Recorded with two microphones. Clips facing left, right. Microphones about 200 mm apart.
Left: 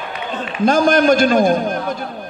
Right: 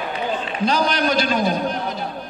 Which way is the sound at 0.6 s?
50° left (ahead or behind).